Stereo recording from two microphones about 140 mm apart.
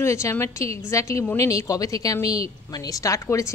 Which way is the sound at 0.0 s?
20° left (ahead or behind).